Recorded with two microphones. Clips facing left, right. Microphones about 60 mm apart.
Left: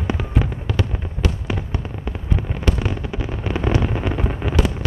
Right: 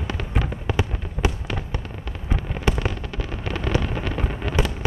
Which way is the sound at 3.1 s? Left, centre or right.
Centre.